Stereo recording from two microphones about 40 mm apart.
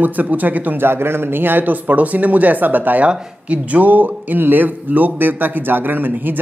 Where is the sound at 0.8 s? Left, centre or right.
Right.